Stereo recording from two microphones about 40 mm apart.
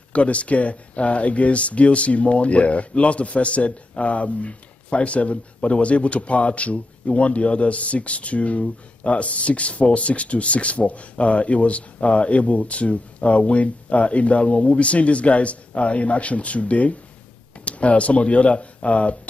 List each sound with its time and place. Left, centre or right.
0.1 s speech: left